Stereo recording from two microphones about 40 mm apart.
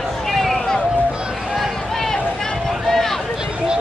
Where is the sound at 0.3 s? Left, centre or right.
Centre.